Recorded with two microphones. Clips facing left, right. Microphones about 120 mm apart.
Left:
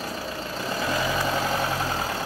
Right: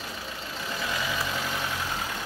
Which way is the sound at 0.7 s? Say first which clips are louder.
Left 5 dB; 40° left (ahead or behind).